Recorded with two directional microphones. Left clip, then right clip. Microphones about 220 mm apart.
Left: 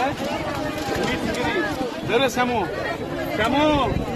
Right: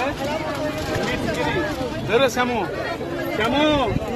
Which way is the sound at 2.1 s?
10° right (ahead or behind).